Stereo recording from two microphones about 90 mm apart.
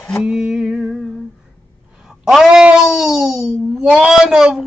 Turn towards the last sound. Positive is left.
turn(degrees=-5)  # may be behind; listen again after turning